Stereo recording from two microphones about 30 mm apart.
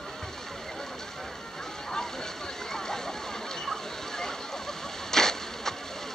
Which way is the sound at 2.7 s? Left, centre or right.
Centre.